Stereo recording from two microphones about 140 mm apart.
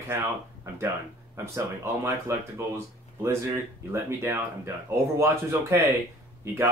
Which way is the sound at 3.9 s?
20° right (ahead or behind).